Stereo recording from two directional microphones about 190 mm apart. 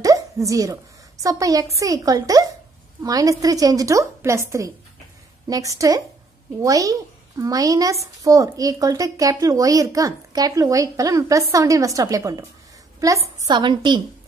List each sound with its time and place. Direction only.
0.0 s a woman's voice: 15° right (ahead or behind)